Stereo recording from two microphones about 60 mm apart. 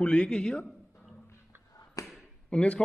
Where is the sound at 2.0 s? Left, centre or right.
Left.